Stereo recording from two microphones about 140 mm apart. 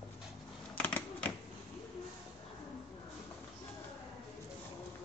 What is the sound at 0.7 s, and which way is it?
Typewriter, 10° left (ahead or behind).